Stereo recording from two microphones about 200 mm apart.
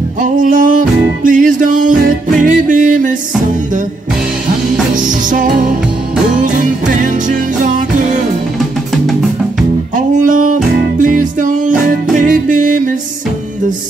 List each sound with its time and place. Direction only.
0.2 s music: 40° right (ahead or behind)
4.9 s music: 40° right (ahead or behind)
9.9 s music: 40° right (ahead or behind)